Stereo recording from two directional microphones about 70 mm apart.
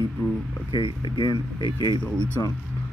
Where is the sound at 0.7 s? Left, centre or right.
Left.